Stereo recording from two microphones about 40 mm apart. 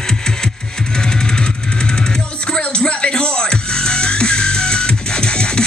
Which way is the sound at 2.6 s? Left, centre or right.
Left.